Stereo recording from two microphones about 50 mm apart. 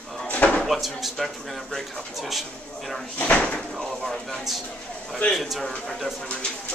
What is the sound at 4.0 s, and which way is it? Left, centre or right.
Speech, centre.